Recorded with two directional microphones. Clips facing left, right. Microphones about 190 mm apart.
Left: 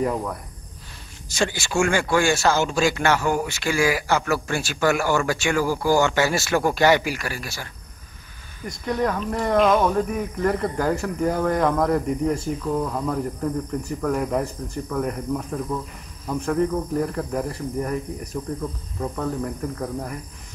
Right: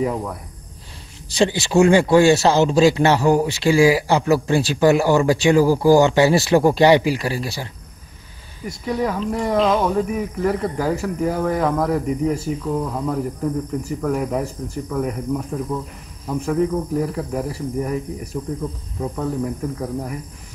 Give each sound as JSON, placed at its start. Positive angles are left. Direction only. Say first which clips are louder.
{"t": 0.0, "sound": "speech", "louder": "right 2 dB", "side_deg": -5}
{"t": 1.4, "sound": "speech", "louder": "right 7 dB", "side_deg": -20}
{"t": 3.1, "sound": "speech", "louder": "right 5 dB", "side_deg": -35}
{"t": 8.6, "sound": "speech", "louder": "right 1 dB", "side_deg": -5}